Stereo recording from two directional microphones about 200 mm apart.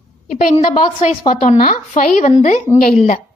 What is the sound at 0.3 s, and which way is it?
A woman's voice, 40° left (ahead or behind).